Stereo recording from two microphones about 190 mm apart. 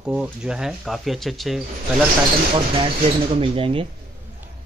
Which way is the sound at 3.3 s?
30° right (ahead or behind).